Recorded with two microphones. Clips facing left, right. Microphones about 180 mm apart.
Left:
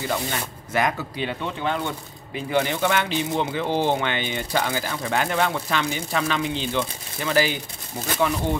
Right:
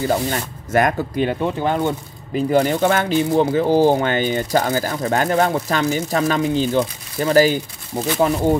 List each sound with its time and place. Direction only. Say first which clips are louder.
0.1 s speech: right 6 dB; 45° right (ahead or behind)